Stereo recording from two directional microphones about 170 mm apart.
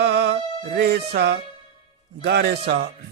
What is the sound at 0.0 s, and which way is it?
Music, 75° right (ahead or behind).